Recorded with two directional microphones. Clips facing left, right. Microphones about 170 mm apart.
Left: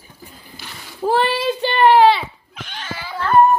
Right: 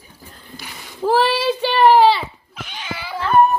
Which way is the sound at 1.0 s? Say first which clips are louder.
Right 1 dB; centre (ahead or behind).